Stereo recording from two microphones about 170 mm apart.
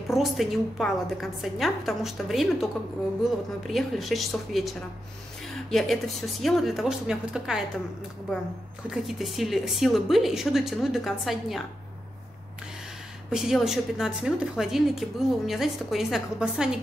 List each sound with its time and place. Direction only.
0.1 s a woman's voice: centre (ahead or behind)
8.8 s a woman's voice: centre (ahead or behind)
13.3 s a woman's voice: centre (ahead or behind)